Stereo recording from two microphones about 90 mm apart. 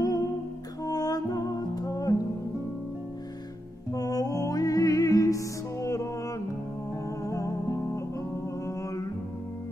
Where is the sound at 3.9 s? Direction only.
45° left (ahead or behind).